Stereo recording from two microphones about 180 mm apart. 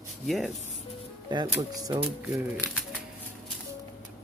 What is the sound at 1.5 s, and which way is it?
Speech, 20° right (ahead or behind).